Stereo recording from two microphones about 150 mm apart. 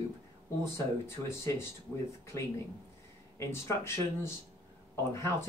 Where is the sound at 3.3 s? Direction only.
20° left (ahead or behind).